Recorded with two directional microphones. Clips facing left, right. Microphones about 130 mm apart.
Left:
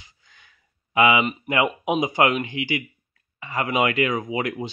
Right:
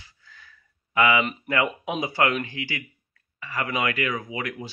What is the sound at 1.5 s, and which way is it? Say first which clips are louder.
Speech: left 4 dB; 15° left (ahead or behind).